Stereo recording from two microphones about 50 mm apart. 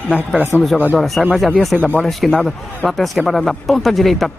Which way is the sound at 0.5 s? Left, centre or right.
Left.